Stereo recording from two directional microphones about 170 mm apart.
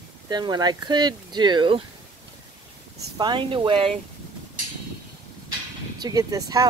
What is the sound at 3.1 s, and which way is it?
Speech, 25° right (ahead or behind).